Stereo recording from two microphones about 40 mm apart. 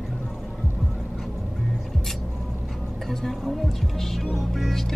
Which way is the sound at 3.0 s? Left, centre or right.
Centre.